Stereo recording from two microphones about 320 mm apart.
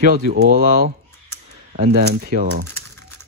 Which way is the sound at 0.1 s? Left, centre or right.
Right.